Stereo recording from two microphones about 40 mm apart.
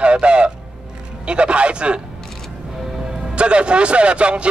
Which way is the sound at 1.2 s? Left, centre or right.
Right.